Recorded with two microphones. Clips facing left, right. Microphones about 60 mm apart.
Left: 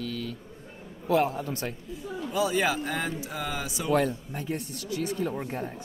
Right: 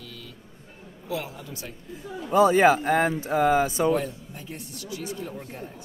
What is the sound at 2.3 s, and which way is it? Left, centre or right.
Speech, right.